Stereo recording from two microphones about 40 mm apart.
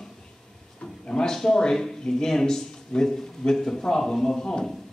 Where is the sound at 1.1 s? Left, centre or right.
Centre.